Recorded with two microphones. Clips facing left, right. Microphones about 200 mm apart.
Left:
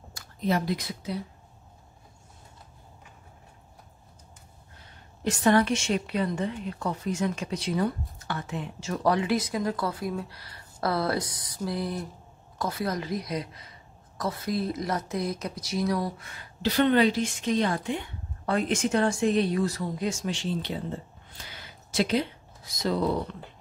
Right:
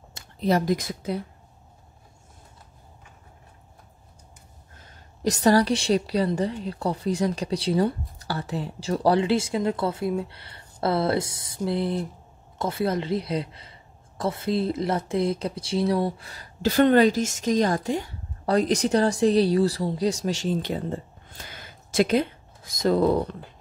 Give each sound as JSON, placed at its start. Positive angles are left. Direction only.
{"t": 0.1, "sound": "speech", "side_deg": -35}
{"t": 5.2, "sound": "speech", "side_deg": -35}
{"t": 21.3, "sound": "a sound", "side_deg": -50}